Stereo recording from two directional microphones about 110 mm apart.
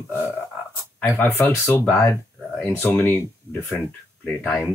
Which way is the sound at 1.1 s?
25° left (ahead or behind).